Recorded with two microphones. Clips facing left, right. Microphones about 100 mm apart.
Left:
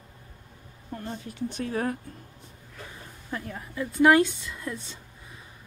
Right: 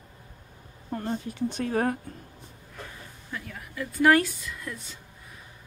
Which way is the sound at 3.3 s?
30° left (ahead or behind).